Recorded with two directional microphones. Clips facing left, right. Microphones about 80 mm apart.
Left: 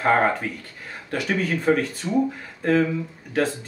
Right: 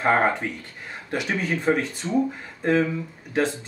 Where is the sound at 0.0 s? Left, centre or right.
Centre.